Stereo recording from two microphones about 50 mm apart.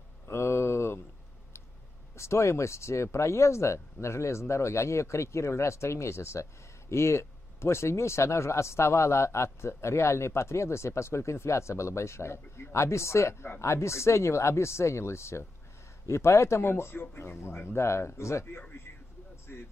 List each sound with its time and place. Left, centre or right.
0.3 s a sound: left
2.1 s a man's voice: left
19.5 s a man's voice: left